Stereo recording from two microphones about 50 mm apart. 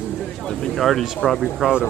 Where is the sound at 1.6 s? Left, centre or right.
Centre.